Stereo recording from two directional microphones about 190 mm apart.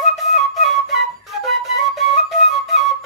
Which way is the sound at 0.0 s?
Centre (ahead or behind).